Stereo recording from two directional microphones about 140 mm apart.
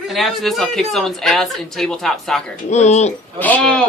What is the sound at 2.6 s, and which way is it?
Speech, 55° left (ahead or behind).